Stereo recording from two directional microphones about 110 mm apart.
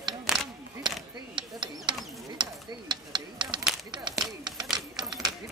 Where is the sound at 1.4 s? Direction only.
45° right (ahead or behind).